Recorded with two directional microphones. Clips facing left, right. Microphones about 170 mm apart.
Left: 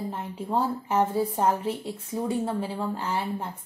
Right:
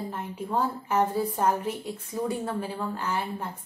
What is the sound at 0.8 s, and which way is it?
Speech, 25° left (ahead or behind).